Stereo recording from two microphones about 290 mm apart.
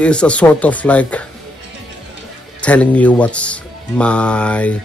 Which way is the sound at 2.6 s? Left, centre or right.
Centre.